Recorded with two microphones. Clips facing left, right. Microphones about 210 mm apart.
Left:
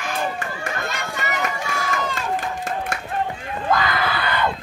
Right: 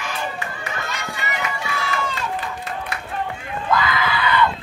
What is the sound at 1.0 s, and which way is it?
Run, 45° left (ahead or behind).